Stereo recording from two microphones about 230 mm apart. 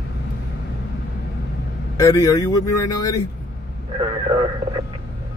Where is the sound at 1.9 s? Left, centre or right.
Centre.